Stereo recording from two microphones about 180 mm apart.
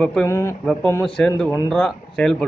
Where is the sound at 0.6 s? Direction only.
5° left (ahead or behind).